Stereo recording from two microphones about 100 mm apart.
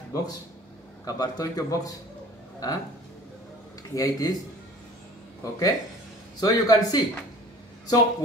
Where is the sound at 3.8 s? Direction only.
35° left (ahead or behind).